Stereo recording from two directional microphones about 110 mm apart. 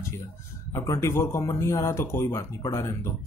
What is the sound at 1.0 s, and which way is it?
A man's voice, 25° left (ahead or behind).